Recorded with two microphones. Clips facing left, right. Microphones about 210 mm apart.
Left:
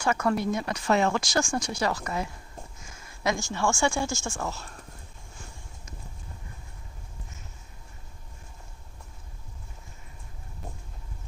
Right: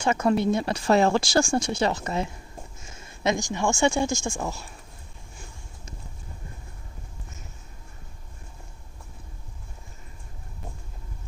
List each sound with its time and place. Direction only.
0.0 s speech: 20° right (ahead or behind)